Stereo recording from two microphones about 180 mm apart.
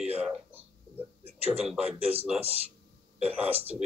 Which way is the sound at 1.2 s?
35° right (ahead or behind).